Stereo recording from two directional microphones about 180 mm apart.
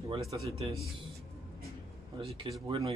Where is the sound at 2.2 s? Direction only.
30° right (ahead or behind).